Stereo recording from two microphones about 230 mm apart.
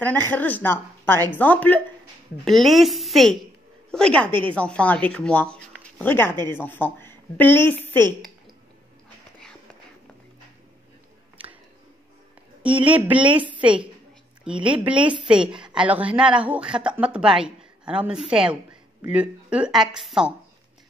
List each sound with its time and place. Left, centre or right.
0.0 s a woman's voice: centre
12.9 s speech: centre
13.3 s a woman's voice: right
15.4 s speech: centre